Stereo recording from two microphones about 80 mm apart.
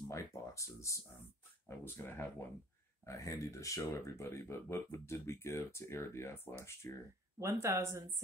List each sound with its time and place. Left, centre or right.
0.1 s speech: left
2.0 s speech: left
3.1 s speech: left
7.3 s speech: right